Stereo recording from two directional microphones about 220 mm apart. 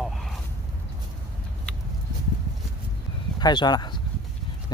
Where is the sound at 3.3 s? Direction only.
20° left (ahead or behind).